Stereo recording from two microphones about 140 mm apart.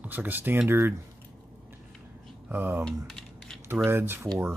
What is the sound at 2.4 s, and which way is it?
Speech, 15° right (ahead or behind).